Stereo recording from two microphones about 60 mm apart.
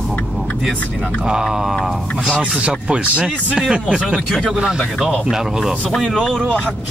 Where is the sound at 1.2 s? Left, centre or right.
Centre.